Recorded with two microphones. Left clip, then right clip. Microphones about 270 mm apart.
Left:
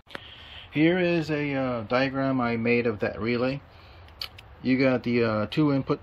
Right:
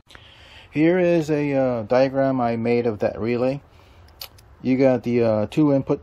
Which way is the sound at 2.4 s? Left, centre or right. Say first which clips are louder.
Right 4 dB; centre.